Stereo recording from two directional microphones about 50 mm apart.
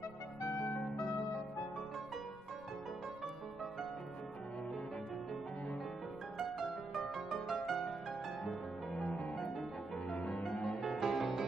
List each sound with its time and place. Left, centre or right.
7.2 s music: centre
8.9 s music: left
11.0 s music: centre